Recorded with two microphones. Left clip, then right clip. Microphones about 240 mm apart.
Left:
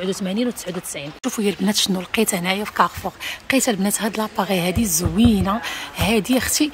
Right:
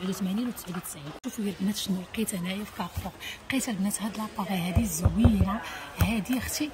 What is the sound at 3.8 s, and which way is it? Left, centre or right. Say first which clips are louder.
Speech: left 11 dB; left.